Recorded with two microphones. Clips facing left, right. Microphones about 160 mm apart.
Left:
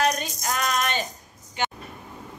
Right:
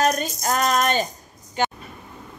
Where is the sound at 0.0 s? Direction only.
40° right (ahead or behind).